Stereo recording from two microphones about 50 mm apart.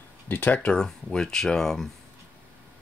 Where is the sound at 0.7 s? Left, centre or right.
Centre.